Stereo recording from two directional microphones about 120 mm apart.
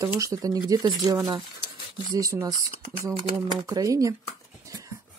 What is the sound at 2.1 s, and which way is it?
Speech, 30° right (ahead or behind).